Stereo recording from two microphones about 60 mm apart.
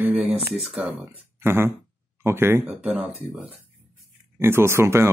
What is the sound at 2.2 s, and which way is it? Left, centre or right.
Speech, right.